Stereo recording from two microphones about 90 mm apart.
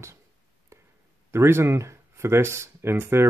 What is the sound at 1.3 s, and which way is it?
Speech, 30° right (ahead or behind).